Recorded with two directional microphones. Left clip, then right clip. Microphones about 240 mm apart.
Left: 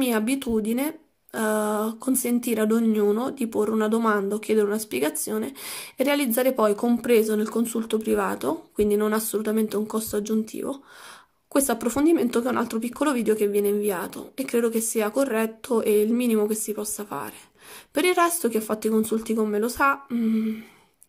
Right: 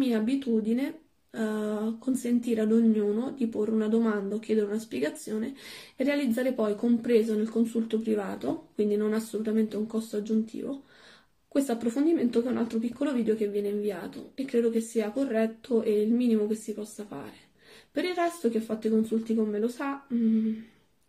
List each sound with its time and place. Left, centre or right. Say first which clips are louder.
0.0 s speech: left 4 dB; left
17.9 s speech: left 8 dB; left